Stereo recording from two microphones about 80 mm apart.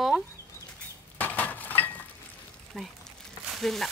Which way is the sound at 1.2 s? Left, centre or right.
Centre.